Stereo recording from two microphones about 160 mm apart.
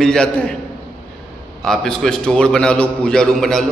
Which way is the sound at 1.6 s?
5° left (ahead or behind).